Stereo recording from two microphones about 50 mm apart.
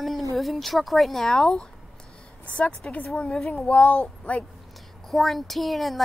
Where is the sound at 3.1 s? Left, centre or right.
Centre.